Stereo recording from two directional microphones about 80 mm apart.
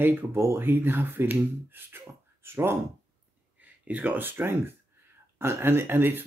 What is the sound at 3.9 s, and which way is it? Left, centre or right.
Speech, centre.